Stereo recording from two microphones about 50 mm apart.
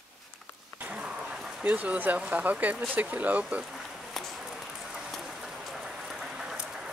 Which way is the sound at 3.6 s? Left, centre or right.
Centre.